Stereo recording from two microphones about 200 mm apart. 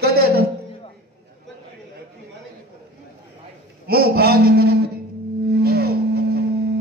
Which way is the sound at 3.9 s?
50° right (ahead or behind).